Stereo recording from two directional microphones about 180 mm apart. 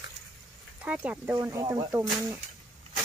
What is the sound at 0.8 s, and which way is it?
Speech, 10° right (ahead or behind).